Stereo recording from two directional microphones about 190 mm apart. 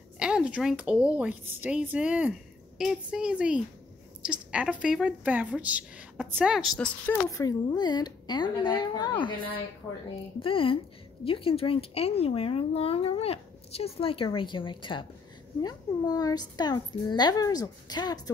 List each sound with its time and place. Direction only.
0.2 s a woman's voice: 5° right (ahead or behind)
7.2 s speech: 20° left (ahead or behind)